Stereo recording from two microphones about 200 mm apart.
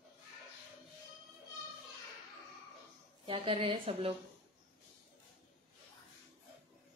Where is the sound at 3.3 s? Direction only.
30° right (ahead or behind).